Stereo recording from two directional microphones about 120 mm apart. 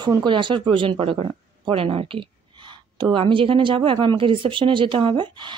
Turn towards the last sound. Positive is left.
turn(degrees=-40)  # may be behind; listen again after turning